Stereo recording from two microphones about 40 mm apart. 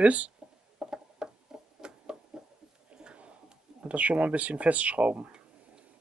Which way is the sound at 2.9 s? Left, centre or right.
Right.